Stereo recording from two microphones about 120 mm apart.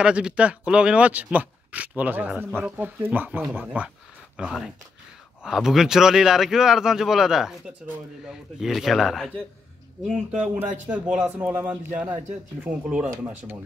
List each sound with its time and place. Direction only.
0.0 s a man's voice: 10° right (ahead or behind)
10.4 s speech: 10° right (ahead or behind)